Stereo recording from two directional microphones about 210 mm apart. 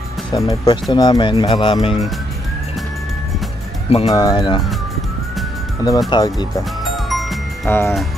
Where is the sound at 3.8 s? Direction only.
25° left (ahead or behind).